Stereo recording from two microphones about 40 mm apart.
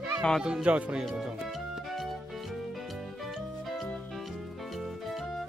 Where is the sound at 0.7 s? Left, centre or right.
Right.